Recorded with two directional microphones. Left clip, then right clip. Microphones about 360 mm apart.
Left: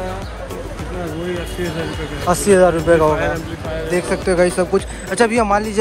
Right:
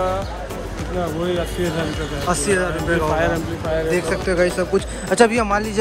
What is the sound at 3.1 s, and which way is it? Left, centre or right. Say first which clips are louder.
Speech: even; right.